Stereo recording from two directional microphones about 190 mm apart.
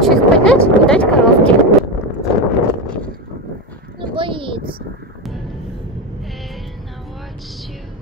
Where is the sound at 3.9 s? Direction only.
25° right (ahead or behind).